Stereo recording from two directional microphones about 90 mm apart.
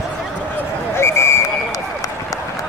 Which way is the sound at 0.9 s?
30° left (ahead or behind).